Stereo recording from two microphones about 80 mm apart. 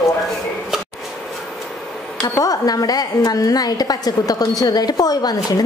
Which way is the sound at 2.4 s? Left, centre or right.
Left.